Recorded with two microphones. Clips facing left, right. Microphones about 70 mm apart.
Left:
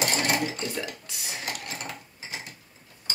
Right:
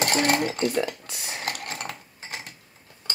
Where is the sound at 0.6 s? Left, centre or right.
Right.